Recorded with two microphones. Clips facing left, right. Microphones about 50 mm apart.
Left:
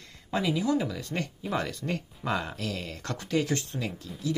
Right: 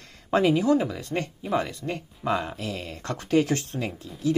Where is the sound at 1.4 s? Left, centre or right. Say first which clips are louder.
Right 4 dB; centre.